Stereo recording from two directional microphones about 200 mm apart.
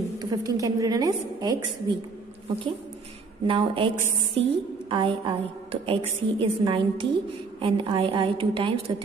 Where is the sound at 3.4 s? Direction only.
25° right (ahead or behind).